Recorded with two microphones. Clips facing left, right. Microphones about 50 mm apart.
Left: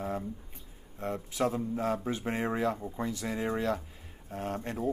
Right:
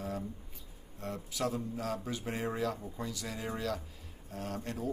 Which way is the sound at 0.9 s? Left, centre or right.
Left.